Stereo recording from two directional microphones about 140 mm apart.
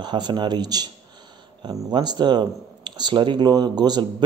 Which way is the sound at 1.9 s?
30° right (ahead or behind).